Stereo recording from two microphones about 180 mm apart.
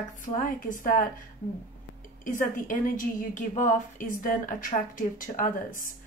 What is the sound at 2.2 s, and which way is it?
A woman's voice, 45° left (ahead or behind).